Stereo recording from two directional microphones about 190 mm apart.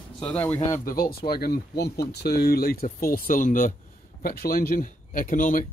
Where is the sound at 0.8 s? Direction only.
50° left (ahead or behind).